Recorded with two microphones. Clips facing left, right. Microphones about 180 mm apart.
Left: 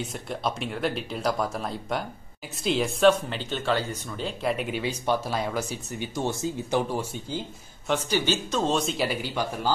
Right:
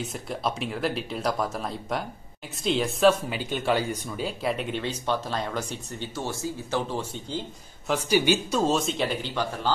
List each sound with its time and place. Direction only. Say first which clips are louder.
0.3 s speech: even; centre (ahead or behind)
4.4 s speech: left 3 dB; centre (ahead or behind)
6.1 s speech: left 4 dB; 20° left (ahead or behind)
7.9 s speech: right 3 dB; 10° right (ahead or behind); by 9.7 s 10° left (ahead or behind)